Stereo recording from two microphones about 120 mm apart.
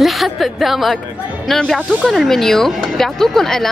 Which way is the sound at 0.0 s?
Centre (ahead or behind).